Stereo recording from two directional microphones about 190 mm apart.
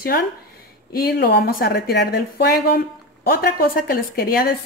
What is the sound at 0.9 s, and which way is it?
Speech, 55° left (ahead or behind).